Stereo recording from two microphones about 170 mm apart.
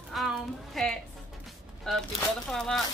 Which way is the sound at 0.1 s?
Centre (ahead or behind).